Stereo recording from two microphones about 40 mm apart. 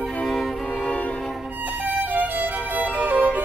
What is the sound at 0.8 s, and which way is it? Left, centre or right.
Music, left.